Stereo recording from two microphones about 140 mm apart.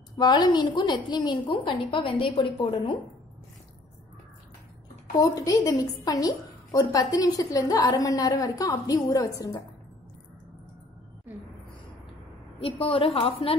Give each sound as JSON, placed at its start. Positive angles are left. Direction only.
{"t": 0.2, "sound": "a woman's voice", "side_deg": 30}
{"t": 5.2, "sound": "a woman's voice", "side_deg": 25}
{"t": 12.5, "sound": "a woman's voice", "side_deg": 40}